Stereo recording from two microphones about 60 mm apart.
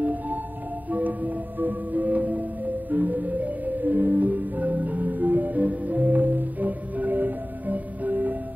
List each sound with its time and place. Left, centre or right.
0.0 s music: right